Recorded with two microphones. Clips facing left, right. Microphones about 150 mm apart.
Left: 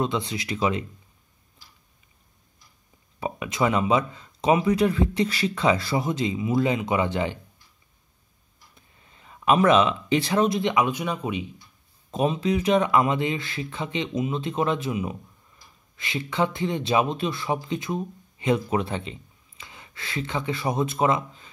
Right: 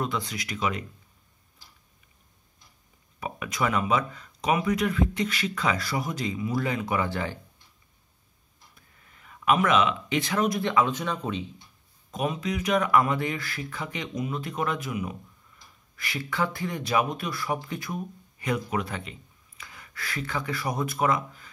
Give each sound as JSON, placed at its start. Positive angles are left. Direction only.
{"t": 0.0, "sound": "speech", "side_deg": 25}
{"t": 3.2, "sound": "speech", "side_deg": 25}
{"t": 8.7, "sound": "speech", "side_deg": 25}
{"t": 12.1, "sound": "speech", "side_deg": 30}